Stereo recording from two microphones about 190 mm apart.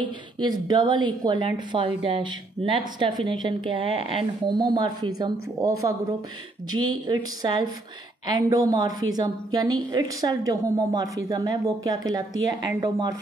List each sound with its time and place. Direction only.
0.0 s a woman's voice: 25° right (ahead or behind)